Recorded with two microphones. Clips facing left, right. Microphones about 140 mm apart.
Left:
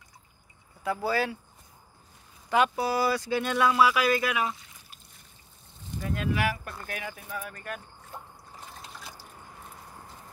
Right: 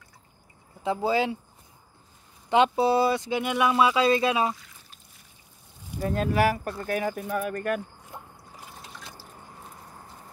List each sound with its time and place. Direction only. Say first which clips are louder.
0.8 s speech: right 3 dB; 20° right (ahead or behind)
2.5 s speech: right 4 dB; 25° right (ahead or behind)
5.9 s speech: right 5 dB; 40° right (ahead or behind); by 7.8 s 55° right (ahead or behind)